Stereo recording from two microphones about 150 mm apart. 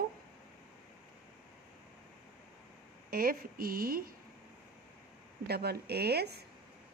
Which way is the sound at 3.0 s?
75° right (ahead or behind).